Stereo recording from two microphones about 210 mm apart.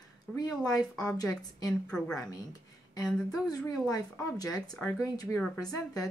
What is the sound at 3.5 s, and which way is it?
Speech, 15° left (ahead or behind).